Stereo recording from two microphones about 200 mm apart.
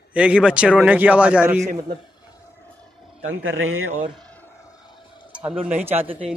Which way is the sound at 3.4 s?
85° right.